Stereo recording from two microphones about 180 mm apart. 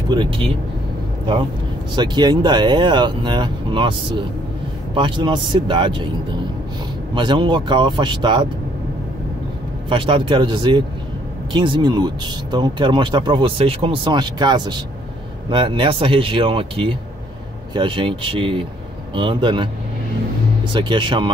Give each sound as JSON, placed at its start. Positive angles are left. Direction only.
{"t": 0.1, "sound": "speech", "side_deg": -30}
{"t": 2.0, "sound": "speech", "side_deg": -25}
{"t": 4.9, "sound": "speech", "side_deg": -25}
{"t": 7.2, "sound": "speech", "side_deg": -25}
{"t": 9.8, "sound": "speech", "side_deg": -30}
{"t": 20.7, "sound": "speech", "side_deg": -25}